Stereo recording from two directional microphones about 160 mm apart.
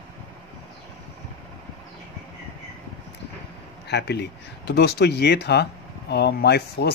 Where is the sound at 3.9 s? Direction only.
90° left.